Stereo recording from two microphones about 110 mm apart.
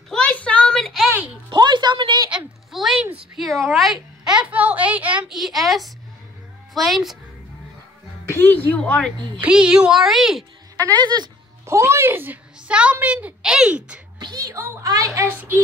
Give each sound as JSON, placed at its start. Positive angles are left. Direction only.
{"t": 0.1, "sound": "a sound", "side_deg": 10}
{"t": 1.5, "sound": "a sound", "side_deg": -45}
{"t": 2.3, "sound": "a sound", "side_deg": 0}
{"t": 3.3, "sound": "a woman's voice", "side_deg": 0}
{"t": 5.3, "sound": "a woman's voice", "side_deg": 0}
{"t": 8.3, "sound": "a woman's voice", "side_deg": 20}
{"t": 9.4, "sound": "a woman's voice", "side_deg": -10}
{"t": 11.0, "sound": "speech", "side_deg": -40}
{"t": 11.6, "sound": "a woman's voice", "side_deg": -25}
{"t": 14.2, "sound": "a woman's voice", "side_deg": -35}
{"t": 15.1, "sound": "a woman's voice", "side_deg": -20}